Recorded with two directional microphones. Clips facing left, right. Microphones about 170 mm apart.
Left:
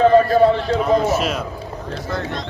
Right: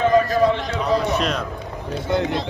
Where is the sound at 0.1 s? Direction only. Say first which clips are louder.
Left 4 dB; 35° left (ahead or behind).